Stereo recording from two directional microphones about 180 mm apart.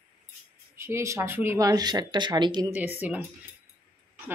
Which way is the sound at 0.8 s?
15° right (ahead or behind).